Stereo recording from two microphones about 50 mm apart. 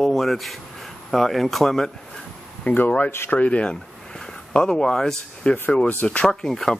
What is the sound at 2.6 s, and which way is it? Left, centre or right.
Speech, left.